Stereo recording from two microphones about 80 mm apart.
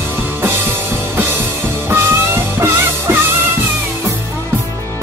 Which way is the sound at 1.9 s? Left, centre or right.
Right.